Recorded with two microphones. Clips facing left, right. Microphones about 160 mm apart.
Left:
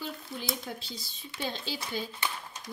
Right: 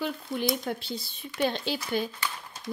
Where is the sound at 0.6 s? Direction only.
60° right (ahead or behind).